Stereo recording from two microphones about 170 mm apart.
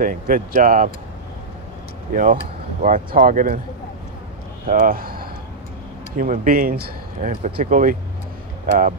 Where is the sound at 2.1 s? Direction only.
50° right (ahead or behind).